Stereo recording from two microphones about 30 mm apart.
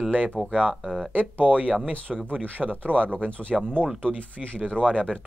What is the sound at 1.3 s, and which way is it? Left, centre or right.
Speech, right.